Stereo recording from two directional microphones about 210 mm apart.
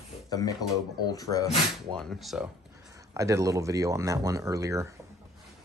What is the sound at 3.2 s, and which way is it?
Speech, 15° right (ahead or behind).